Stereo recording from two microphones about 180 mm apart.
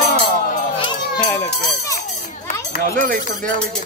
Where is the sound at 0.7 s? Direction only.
25° left (ahead or behind).